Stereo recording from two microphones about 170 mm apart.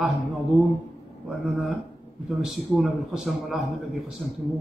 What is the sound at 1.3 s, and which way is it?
A man's voice, centre (ahead or behind).